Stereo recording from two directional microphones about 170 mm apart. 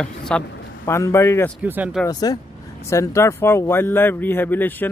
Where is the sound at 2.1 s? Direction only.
20° left (ahead or behind).